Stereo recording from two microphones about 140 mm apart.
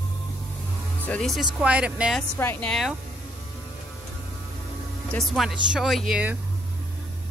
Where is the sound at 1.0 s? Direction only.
5° left (ahead or behind).